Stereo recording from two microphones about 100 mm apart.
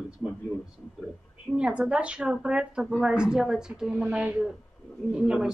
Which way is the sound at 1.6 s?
10° right (ahead or behind).